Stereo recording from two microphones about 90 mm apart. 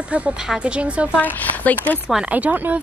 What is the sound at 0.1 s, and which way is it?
Speech, 15° right (ahead or behind).